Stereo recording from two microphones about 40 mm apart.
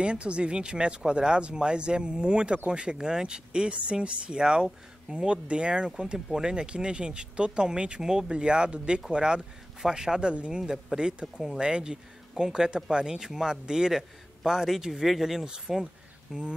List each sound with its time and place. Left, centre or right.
0.0 s speech: right
10.3 s speech: right
10.6 s a man's voice: centre
16.3 s a man's voice: centre